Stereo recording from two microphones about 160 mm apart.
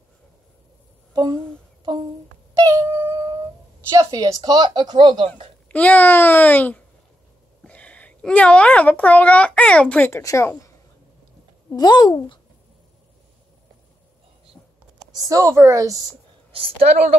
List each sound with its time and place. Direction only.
1.1 s a woman's voice: 25° right (ahead or behind)
2.5 s a sound: 20° right (ahead or behind)
3.9 s a woman's voice: 20° right (ahead or behind)
5.7 s a child's voice: 10° left (ahead or behind)
11.7 s a woman's voice: 25° left (ahead or behind)
15.1 s a woman's voice: 20° right (ahead or behind)
16.5 s a woman's voice: 40° right (ahead or behind)